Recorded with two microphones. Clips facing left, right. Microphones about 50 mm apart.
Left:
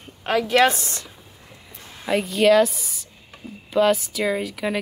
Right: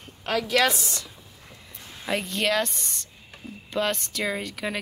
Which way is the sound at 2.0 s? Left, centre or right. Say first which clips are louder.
Left 8 dB; centre.